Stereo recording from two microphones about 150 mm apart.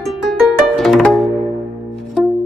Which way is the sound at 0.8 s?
Centre (ahead or behind).